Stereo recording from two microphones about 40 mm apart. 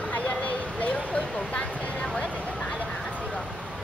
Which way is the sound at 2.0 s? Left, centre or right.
Left.